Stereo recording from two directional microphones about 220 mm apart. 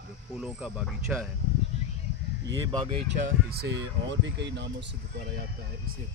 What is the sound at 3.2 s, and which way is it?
Speech, 45° right (ahead or behind).